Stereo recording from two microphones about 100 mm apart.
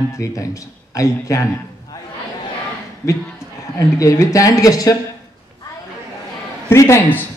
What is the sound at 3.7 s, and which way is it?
Speech, 35° left (ahead or behind).